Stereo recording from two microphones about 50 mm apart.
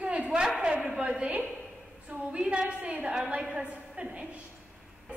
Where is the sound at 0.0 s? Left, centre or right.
Right.